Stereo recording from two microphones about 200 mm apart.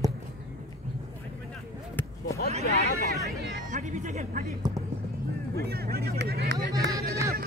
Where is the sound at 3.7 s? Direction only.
40° right (ahead or behind).